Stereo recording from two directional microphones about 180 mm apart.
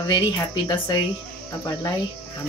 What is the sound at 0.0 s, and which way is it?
Speech, 20° left (ahead or behind).